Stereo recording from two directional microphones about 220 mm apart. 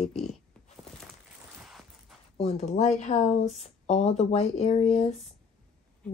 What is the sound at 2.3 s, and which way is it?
Speech, 30° left (ahead or behind).